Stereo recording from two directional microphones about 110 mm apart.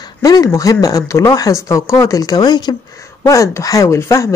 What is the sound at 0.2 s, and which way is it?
Speech, 35° left (ahead or behind).